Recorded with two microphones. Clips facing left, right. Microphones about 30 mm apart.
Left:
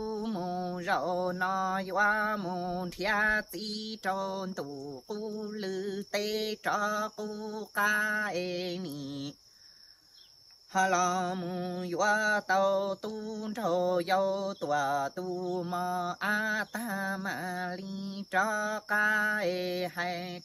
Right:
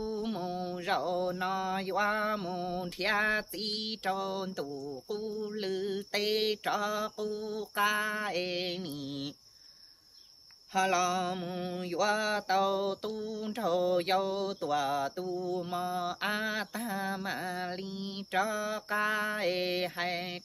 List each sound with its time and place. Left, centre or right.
0.0 s mantra: right
7.2 s speech: right
7.9 s mantra: right
10.7 s mantra: right
18.4 s mantra: centre